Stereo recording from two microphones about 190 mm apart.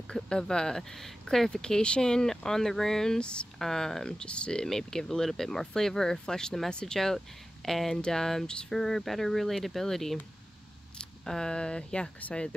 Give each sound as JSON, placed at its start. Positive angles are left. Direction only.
{"t": 0.1, "sound": "speech", "side_deg": 5}